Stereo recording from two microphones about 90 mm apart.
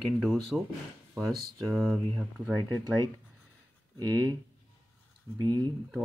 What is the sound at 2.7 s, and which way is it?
Speech, 50° right (ahead or behind).